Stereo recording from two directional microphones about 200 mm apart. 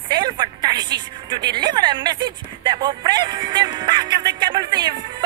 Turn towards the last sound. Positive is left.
turn(degrees=-20)  # may be behind; listen again after turning